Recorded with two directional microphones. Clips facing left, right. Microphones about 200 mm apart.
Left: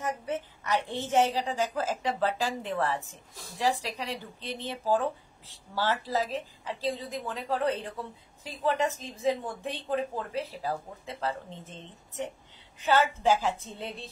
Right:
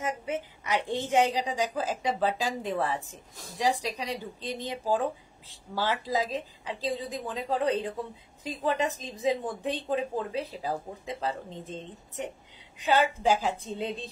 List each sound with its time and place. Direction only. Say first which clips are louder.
0.2 s a woman's voice: right 1 dB; 15° right (ahead or behind)